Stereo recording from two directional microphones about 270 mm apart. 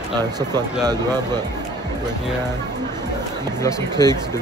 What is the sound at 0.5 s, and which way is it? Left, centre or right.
Speech, centre.